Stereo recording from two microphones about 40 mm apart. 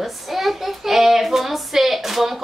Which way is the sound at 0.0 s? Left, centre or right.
Centre.